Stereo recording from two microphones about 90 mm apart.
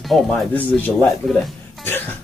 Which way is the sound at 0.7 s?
20° left (ahead or behind).